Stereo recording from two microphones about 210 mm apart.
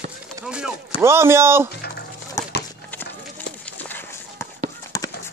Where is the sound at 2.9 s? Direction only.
10° left (ahead or behind).